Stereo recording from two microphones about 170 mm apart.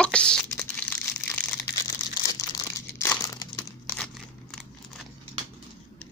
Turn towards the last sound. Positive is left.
turn(degrees=5)  # may be behind; listen again after turning